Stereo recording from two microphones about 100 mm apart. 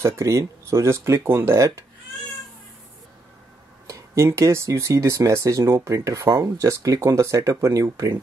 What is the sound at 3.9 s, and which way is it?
Speech, 30° right (ahead or behind).